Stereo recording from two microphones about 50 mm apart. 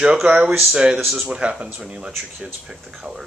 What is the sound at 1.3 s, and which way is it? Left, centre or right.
Speech, right.